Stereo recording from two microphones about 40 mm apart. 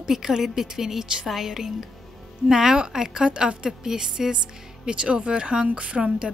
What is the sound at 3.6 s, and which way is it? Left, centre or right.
Speech, centre.